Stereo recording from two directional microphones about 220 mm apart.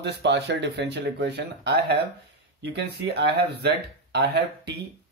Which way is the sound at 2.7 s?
50° right (ahead or behind).